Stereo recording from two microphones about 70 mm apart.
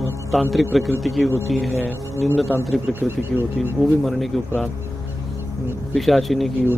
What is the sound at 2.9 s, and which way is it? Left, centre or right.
Speech, right.